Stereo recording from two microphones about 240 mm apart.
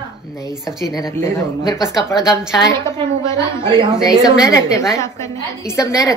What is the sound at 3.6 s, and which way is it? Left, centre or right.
Speech, centre.